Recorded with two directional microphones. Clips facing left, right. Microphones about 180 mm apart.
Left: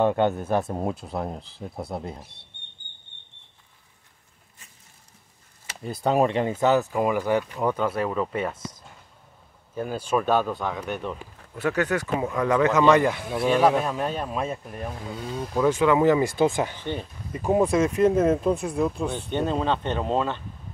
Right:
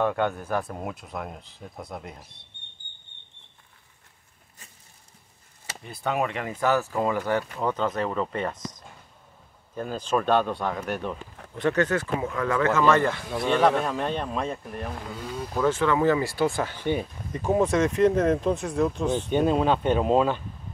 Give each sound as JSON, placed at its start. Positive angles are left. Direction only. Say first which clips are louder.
{"t": 0.0, "sound": "speech", "louder": "left 4 dB", "side_deg": 25}
{"t": 5.9, "sound": "speech", "louder": "left 6 dB", "side_deg": 35}
{"t": 16.8, "sound": "speech", "louder": "right 4 dB", "side_deg": -10}
{"t": 17.4, "sound": "speech", "louder": "left 1 dB", "side_deg": 15}
{"t": 19.2, "sound": "speech", "louder": "right 3 dB", "side_deg": -10}